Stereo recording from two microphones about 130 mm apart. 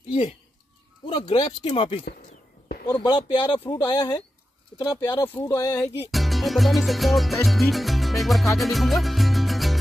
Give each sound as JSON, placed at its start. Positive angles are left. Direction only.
{"t": 1.0, "sound": "speech", "side_deg": 40}
{"t": 2.9, "sound": "speech", "side_deg": 35}
{"t": 6.1, "sound": "music", "side_deg": 0}